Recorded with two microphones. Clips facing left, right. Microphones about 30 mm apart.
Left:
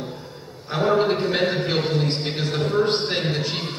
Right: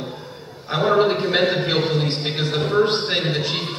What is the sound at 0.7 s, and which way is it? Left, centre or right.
A man's voice, centre.